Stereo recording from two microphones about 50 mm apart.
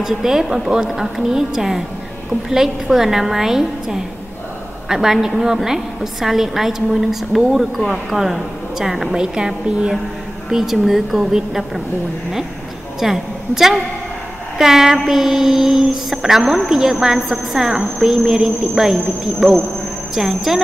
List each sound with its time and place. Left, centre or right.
0.0 s a woman's voice: centre
9.1 s speech: centre
10.5 s a woman's voice: centre
13.0 s a woman's voice: centre